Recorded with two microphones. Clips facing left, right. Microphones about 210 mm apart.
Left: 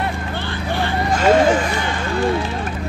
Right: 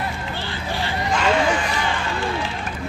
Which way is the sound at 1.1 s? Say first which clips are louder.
Left 6 dB; 40° left (ahead or behind).